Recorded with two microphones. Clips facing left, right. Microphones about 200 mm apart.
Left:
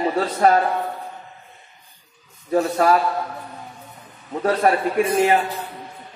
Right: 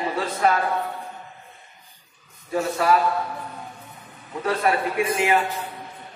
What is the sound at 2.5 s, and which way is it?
Speech, 45° left (ahead or behind).